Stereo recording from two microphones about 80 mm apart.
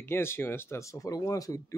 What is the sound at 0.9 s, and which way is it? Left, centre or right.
Speech, left.